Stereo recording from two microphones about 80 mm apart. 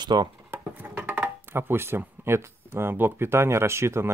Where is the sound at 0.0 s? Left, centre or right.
Right.